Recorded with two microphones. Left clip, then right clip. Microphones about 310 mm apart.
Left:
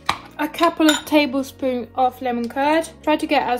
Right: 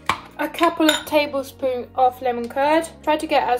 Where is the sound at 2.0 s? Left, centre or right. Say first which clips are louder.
Right 2 dB; left.